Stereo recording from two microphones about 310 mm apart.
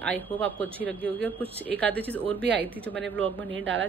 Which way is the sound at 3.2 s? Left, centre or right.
Right.